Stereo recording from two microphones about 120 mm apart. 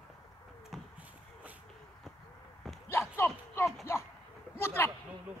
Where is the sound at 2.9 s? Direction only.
20° left (ahead or behind).